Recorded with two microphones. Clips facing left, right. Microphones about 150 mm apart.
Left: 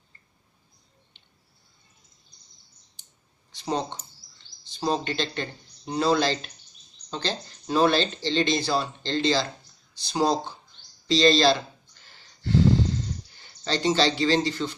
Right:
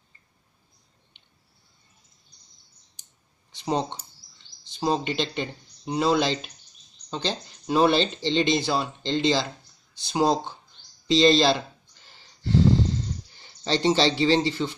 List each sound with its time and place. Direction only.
3.6 s speech: 15° right (ahead or behind)
13.7 s speech: 30° right (ahead or behind)